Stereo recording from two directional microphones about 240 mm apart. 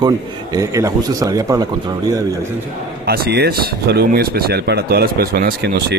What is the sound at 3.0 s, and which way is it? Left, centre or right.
Speech, right.